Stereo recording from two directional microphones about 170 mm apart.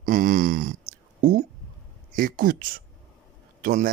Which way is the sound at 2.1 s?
55° right (ahead or behind).